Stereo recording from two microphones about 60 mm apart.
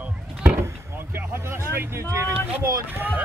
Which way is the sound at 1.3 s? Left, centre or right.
Right.